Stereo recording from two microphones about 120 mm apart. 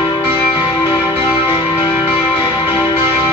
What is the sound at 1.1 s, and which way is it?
Music, 45° left (ahead or behind).